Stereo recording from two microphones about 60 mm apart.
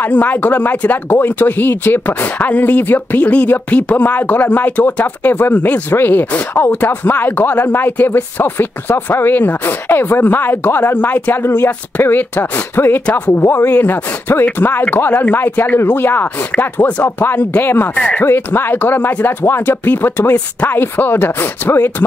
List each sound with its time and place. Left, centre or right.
0.0 s speech: left
11.4 s speech: left
17.9 s speech: left
18.2 s speech: left